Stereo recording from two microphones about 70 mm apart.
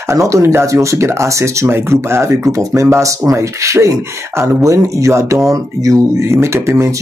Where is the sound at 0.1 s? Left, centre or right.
Right.